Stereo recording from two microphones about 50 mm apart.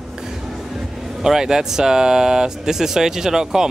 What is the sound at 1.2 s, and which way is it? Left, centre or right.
Speech, centre.